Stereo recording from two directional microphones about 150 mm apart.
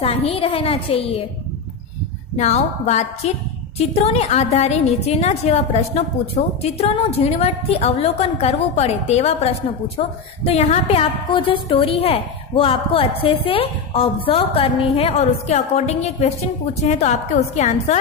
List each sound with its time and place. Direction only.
0.0 s a woman's voice: 40° left (ahead or behind)
2.3 s a woman's voice: 45° left (ahead or behind)